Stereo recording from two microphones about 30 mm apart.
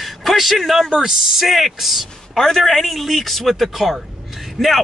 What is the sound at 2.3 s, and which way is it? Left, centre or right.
Speech, centre.